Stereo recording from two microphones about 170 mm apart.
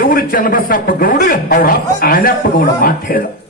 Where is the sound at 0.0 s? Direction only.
60° left (ahead or behind).